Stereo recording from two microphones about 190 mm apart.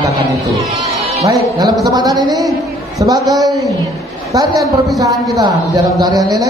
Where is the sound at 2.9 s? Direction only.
20° right (ahead or behind).